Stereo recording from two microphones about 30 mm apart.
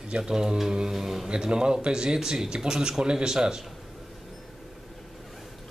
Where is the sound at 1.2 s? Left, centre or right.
Right.